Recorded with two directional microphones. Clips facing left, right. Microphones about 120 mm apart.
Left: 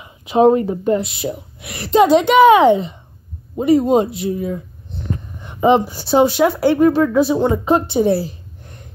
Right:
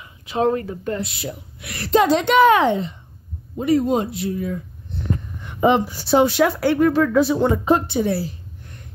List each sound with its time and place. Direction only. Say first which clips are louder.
0.0 s speech: left 8 dB; 20° left (ahead or behind)